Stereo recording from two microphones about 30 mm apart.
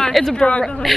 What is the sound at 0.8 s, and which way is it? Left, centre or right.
Speech, centre.